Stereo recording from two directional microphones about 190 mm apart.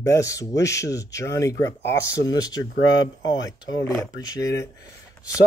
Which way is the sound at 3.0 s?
75° left (ahead or behind).